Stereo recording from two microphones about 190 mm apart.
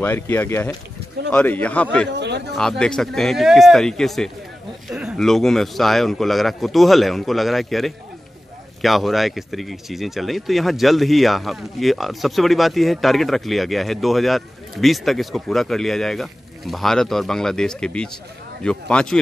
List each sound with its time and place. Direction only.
0.0 s a man's voice: 10° left (ahead or behind)
2.1 s a sound: 65° right (ahead or behind)
2.8 s speech: 5° left (ahead or behind)